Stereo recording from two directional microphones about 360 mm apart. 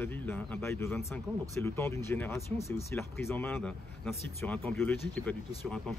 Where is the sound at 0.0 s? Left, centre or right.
Centre.